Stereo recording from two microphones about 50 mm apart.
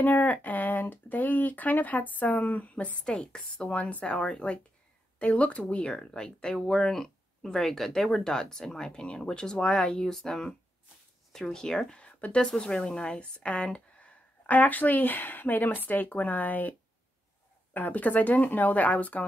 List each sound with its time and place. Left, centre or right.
0.0 s speech: left
3.2 s speech: centre
12.0 s a sound: left
12.4 s speech: centre; by 16.7 s left
17.7 s speech: left